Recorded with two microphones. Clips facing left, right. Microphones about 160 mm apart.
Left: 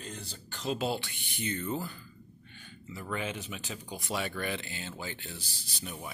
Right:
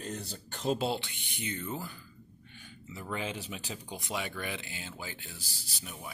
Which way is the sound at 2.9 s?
25° right (ahead or behind).